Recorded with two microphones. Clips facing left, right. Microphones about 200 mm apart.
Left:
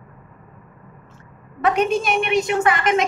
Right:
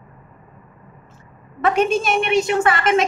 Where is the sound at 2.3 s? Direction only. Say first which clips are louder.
Right 1 dB; 20° left (ahead or behind).